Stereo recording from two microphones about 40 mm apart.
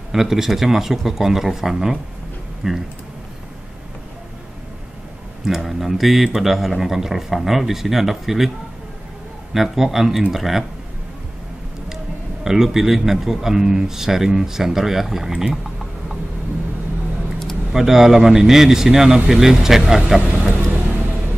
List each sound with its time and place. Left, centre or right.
0.1 s a man's voice: centre
5.4 s speech: centre
9.5 s a man's voice: centre
12.4 s a man's voice: centre
17.7 s a man's voice: centre
20.2 s vehicle: right